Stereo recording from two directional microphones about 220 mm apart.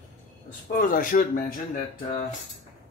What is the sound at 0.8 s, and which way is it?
Speech, 40° left (ahead or behind).